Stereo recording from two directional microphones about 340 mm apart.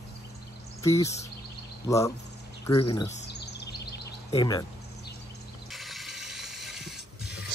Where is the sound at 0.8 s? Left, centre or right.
Centre.